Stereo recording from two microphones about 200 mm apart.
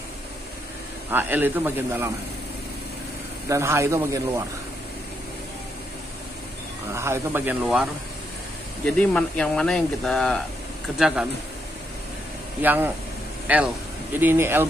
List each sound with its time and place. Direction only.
1.1 s a man's voice: 10° right (ahead or behind)
3.4 s a man's voice: 15° right (ahead or behind)
6.9 s a man's voice: 10° right (ahead or behind)
8.8 s speech: 5° left (ahead or behind)
12.6 s a man's voice: 10° right (ahead or behind)